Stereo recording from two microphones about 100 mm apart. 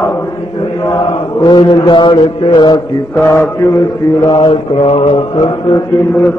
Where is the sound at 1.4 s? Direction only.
55° left (ahead or behind).